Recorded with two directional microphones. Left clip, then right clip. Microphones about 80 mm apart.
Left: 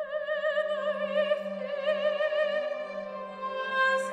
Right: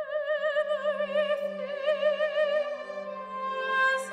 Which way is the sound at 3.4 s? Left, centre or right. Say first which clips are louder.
Right 1 dB; right.